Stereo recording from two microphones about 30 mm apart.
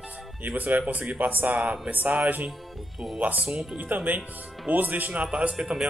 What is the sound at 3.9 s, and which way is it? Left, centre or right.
A man's voice, right.